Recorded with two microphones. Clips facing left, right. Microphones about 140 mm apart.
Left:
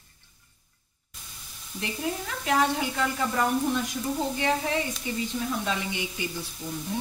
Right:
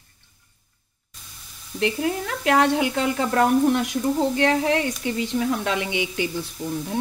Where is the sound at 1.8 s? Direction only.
70° right (ahead or behind); by 6.2 s 85° right.